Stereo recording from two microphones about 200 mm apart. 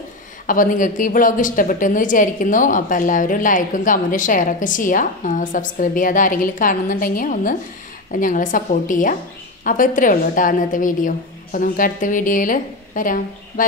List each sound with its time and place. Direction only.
0.5 s speech: 40° left (ahead or behind)